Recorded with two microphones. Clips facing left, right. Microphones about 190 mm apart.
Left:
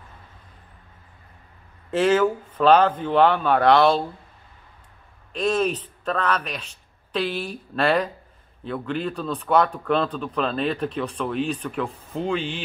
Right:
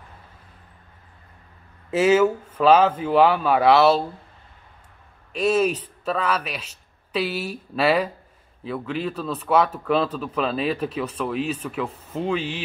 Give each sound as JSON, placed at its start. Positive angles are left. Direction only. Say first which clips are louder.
{"t": 1.9, "sound": "speech", "louder": "right 2 dB", "side_deg": -5}
{"t": 5.3, "sound": "speech", "louder": "right 2 dB", "side_deg": -5}